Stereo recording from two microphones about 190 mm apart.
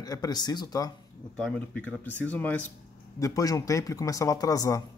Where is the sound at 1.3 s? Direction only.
5° left (ahead or behind).